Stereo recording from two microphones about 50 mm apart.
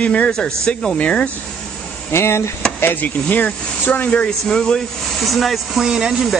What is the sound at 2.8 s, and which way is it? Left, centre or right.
Speech, left.